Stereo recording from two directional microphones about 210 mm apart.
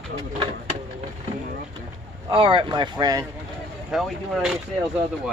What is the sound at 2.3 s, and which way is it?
Speech, 25° right (ahead or behind).